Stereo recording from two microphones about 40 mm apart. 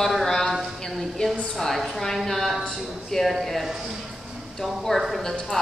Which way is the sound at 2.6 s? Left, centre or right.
Centre.